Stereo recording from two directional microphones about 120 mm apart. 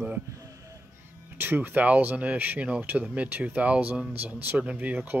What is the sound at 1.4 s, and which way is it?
Speech, 15° right (ahead or behind).